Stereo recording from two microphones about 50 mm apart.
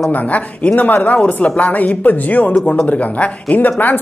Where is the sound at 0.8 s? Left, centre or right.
Left.